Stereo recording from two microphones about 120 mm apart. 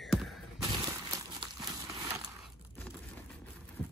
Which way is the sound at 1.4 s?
30° right (ahead or behind).